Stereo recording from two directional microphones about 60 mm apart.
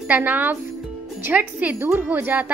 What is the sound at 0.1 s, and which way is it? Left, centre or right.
Speech, right.